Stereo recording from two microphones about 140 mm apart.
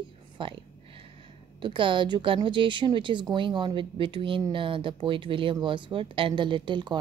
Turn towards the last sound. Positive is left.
turn(degrees=-35)  # may be behind; listen again after turning